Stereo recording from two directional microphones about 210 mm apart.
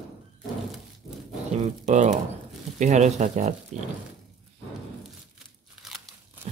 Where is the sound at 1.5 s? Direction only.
35° right (ahead or behind).